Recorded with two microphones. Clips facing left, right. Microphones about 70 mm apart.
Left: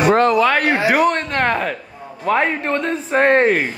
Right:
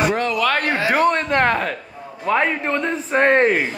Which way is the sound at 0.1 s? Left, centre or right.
Left.